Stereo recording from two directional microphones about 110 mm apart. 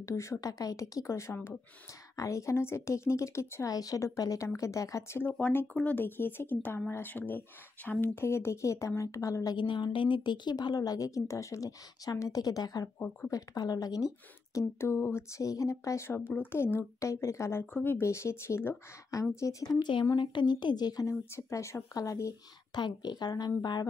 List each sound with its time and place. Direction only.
0.0 s speech: 30° left (ahead or behind)
14.5 s speech: 25° left (ahead or behind)
19.4 s speech: 35° left (ahead or behind)
22.8 s speech: 40° left (ahead or behind)